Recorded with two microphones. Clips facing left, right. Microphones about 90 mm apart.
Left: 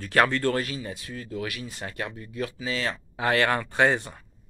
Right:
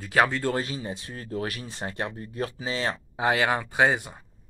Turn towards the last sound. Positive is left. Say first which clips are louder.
# even
turn(degrees=-10)  # may be behind; listen again after turning